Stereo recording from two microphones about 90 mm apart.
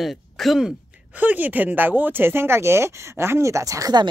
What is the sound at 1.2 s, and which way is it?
Speech, 20° right (ahead or behind).